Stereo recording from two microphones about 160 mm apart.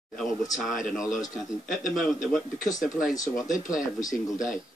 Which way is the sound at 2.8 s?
Centre (ahead or behind).